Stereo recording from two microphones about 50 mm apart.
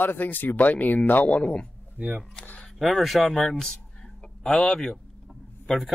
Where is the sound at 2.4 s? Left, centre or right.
Left.